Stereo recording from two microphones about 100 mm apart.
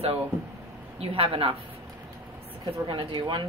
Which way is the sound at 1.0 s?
70° right (ahead or behind).